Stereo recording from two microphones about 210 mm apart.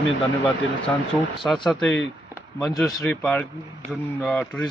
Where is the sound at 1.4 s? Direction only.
Centre (ahead or behind).